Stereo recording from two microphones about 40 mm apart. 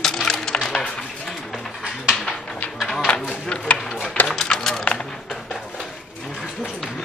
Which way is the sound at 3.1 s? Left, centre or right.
Left.